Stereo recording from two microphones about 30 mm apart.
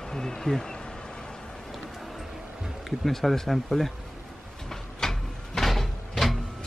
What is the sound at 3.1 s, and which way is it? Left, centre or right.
Speech, centre.